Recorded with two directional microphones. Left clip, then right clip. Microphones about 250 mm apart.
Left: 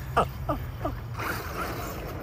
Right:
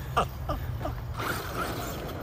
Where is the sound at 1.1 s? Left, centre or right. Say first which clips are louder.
Right 2 dB; right.